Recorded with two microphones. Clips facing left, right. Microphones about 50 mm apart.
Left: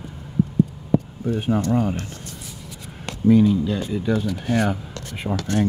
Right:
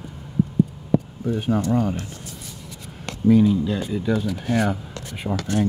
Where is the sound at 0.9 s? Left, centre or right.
Centre.